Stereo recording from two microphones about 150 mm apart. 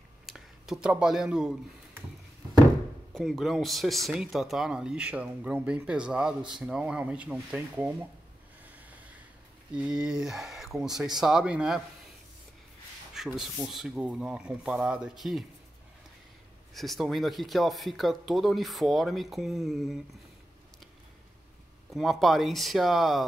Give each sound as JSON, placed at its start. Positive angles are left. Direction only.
{"t": 0.3, "sound": "speech", "side_deg": -5}
{"t": 3.2, "sound": "speech", "side_deg": 0}
{"t": 8.7, "sound": "a sound", "side_deg": -10}
{"t": 9.8, "sound": "speech", "side_deg": -5}
{"t": 13.1, "sound": "rub", "side_deg": -5}
{"t": 13.7, "sound": "speech", "side_deg": -5}
{"t": 16.7, "sound": "speech", "side_deg": 0}
{"t": 21.9, "sound": "speech", "side_deg": 0}